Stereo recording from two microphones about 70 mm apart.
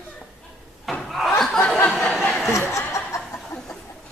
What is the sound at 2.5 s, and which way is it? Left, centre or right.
Chuckle, left.